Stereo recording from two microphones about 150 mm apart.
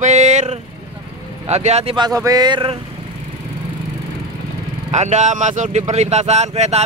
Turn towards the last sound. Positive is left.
turn(degrees=-45)  # may be behind; listen again after turning